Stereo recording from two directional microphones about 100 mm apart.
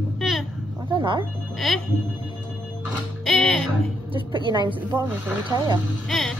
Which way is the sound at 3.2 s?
5° left (ahead or behind).